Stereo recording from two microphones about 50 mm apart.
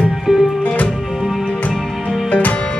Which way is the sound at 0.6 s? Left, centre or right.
Left.